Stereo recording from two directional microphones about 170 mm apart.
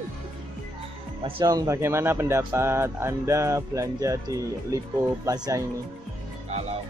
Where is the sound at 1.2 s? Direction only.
25° right (ahead or behind).